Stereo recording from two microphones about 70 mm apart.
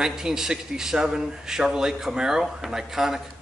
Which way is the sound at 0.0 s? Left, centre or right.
Centre.